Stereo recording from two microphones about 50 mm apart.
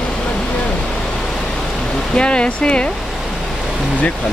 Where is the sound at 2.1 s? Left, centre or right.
Centre.